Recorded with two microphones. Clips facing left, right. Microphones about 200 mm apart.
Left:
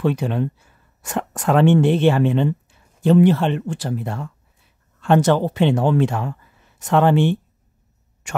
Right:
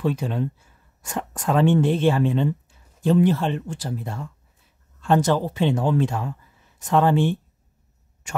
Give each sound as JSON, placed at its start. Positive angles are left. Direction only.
{"t": 0.0, "sound": "speech", "side_deg": 70}